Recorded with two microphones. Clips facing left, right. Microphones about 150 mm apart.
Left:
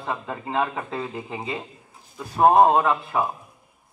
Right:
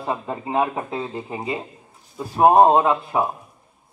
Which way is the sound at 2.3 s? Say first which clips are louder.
Right 2 dB; 10° right (ahead or behind).